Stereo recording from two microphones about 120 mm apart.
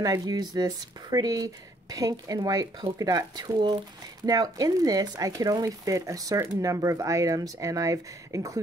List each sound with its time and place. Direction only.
0.0 s speech: 30° right (ahead or behind)